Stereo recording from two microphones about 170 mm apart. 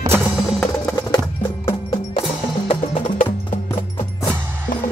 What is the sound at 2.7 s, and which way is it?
Wood block, 45° left (ahead or behind).